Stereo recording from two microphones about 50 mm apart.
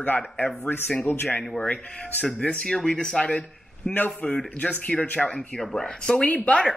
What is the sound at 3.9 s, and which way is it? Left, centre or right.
Speech, centre.